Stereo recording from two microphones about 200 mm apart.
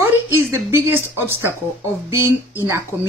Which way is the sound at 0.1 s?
15° right (ahead or behind).